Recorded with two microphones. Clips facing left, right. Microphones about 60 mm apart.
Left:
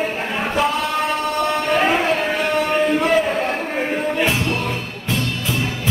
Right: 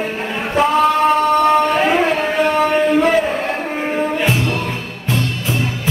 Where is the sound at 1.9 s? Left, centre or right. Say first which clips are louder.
Right 3 dB; right.